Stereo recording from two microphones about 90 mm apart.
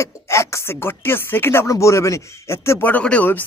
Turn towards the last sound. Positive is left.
turn(degrees=15)  # may be behind; listen again after turning